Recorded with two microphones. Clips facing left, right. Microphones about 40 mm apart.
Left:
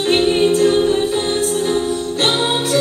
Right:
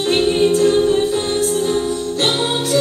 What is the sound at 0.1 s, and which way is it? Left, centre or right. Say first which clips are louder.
Music: left 1 dB; centre.